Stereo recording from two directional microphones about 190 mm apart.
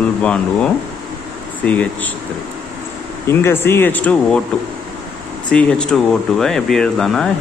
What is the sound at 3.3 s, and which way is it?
Speech, 15° left (ahead or behind).